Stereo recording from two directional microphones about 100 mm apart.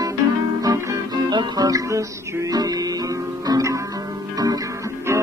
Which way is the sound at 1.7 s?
35° right (ahead or behind).